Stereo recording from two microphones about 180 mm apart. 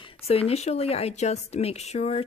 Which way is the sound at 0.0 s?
35° left (ahead or behind).